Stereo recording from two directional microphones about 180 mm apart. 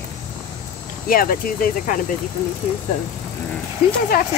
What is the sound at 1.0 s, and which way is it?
Speech, 55° left (ahead or behind).